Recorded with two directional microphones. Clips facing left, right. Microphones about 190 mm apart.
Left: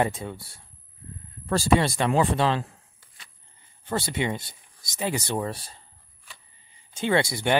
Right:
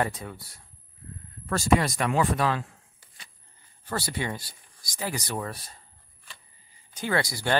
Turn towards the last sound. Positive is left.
turn(degrees=25)  # may be behind; listen again after turning